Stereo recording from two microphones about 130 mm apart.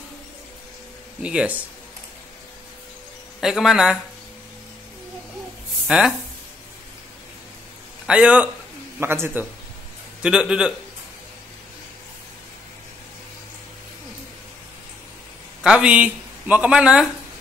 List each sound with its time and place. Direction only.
1.2 s speech: 10° right (ahead or behind)
3.3 s speech: centre (ahead or behind)
5.9 s speech: 5° right (ahead or behind)
8.1 s speech: 10° right (ahead or behind)
10.2 s speech: 5° right (ahead or behind)
15.6 s speech: 5° right (ahead or behind)